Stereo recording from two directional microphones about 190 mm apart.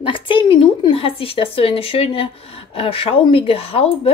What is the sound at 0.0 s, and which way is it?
Speech, 25° left (ahead or behind).